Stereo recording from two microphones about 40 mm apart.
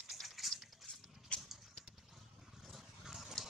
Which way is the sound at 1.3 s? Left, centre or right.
Left.